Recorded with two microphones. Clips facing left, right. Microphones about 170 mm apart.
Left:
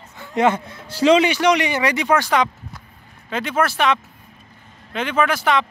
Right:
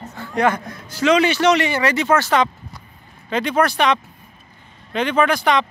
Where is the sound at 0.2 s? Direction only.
20° left (ahead or behind).